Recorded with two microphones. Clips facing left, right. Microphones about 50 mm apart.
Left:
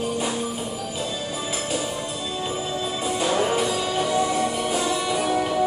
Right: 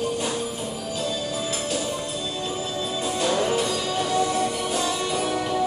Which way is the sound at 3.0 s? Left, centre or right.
Centre.